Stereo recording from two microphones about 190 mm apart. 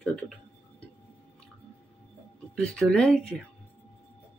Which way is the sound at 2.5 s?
5° left (ahead or behind).